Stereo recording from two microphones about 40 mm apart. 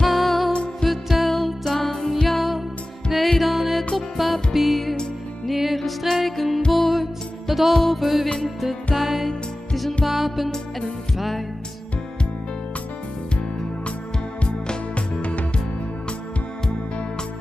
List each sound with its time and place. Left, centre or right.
0.0 s music: centre
0.5 s music: left
0.8 s music: centre
14.4 s music: left